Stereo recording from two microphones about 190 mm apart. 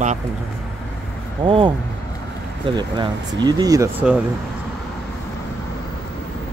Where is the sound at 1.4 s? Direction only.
25° right (ahead or behind).